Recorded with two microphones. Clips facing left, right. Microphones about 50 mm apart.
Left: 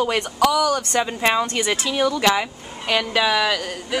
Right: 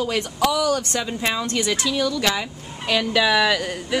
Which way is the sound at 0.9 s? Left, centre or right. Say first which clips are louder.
Left 5 dB; left.